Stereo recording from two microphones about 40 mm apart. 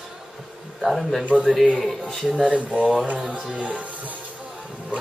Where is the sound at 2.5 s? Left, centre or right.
Right.